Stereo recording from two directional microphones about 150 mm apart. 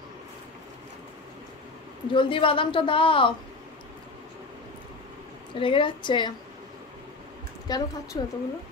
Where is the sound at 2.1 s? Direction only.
35° left (ahead or behind).